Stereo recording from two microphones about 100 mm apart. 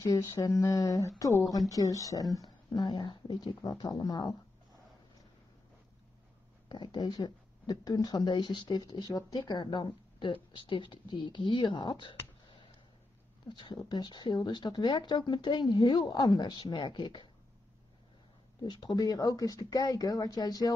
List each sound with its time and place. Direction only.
0.0 s speech: 35° left (ahead or behind)
6.7 s speech: 50° left (ahead or behind)
13.5 s speech: 50° left (ahead or behind)
18.6 s speech: 50° left (ahead or behind)